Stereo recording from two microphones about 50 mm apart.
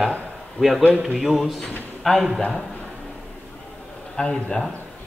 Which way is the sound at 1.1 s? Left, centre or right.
Centre.